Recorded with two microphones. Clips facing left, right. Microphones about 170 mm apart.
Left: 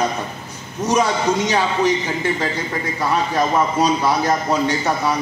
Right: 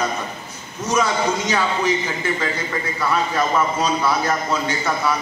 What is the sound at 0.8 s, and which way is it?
Speech, 35° left (ahead or behind).